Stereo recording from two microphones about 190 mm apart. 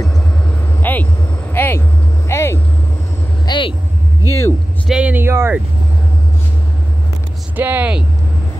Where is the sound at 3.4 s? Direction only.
25° left (ahead or behind).